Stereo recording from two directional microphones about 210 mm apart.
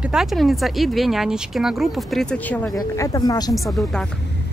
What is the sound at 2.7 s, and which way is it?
Speech, 15° left (ahead or behind).